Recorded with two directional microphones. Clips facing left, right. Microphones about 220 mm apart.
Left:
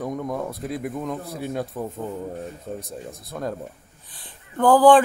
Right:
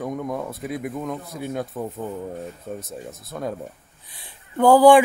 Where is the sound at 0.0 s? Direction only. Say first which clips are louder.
Even; centre (ahead or behind).